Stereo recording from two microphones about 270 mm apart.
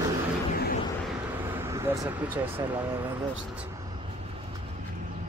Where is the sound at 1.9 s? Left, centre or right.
Centre.